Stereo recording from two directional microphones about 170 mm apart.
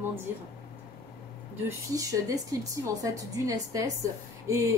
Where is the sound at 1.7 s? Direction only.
20° right (ahead or behind).